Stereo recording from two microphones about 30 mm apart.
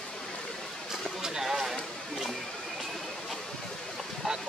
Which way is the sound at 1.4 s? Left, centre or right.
Centre.